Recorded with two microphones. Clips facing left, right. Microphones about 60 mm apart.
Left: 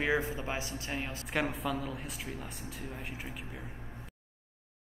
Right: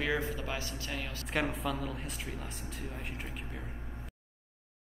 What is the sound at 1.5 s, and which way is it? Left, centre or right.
Speech, centre.